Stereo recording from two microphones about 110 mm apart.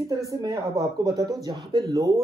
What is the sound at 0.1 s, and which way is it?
Speech, 30° right (ahead or behind).